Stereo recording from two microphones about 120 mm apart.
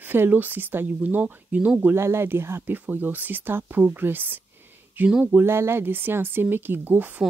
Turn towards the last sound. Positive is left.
turn(degrees=-15)  # may be behind; listen again after turning